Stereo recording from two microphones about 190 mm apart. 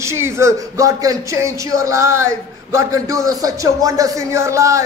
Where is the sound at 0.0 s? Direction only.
15° right (ahead or behind).